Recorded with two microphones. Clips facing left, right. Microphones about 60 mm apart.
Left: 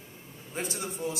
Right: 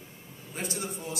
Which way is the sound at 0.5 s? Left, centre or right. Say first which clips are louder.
Left 1 dB; left.